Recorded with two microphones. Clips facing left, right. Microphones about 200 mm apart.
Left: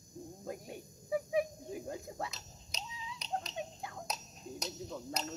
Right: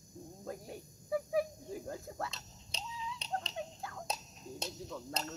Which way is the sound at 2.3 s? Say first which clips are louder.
Even; 30° right (ahead or behind).